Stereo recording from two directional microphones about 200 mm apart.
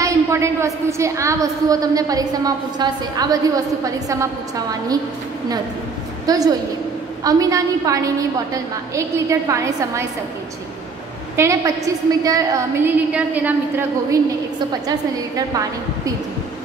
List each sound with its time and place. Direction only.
0.0 s a woman's voice: 15° right (ahead or behind)
6.2 s a woman's voice: 20° right (ahead or behind)
11.3 s a woman's voice: 15° right (ahead or behind)